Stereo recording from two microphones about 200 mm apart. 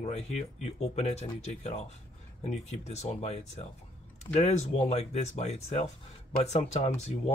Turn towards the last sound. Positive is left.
turn(degrees=30)  # may be behind; listen again after turning